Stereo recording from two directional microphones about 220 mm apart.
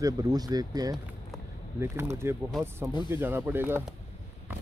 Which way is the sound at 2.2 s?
10° right (ahead or behind).